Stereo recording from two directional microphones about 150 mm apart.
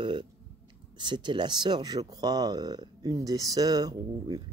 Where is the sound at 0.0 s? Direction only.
30° right (ahead or behind).